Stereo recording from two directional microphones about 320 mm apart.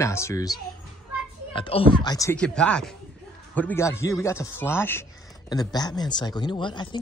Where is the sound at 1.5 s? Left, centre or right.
Centre.